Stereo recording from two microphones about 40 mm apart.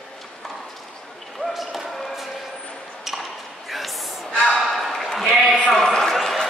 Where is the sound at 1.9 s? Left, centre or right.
Centre.